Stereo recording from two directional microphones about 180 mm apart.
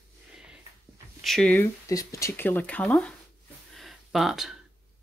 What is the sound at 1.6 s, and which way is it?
Speech, 15° left (ahead or behind).